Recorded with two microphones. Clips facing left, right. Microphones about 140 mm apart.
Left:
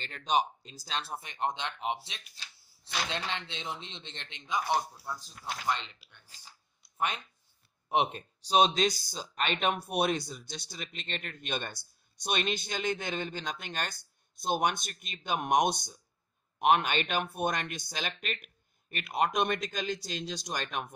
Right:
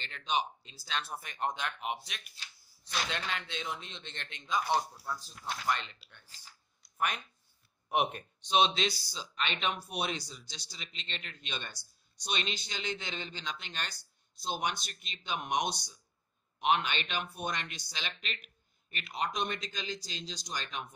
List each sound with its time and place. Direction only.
0.0 s speech: 45° left (ahead or behind); by 4.6 s 25° left (ahead or behind)
4.7 s speech: 15° left (ahead or behind)
7.9 s speech: 30° left (ahead or behind); by 20.9 s 55° left (ahead or behind)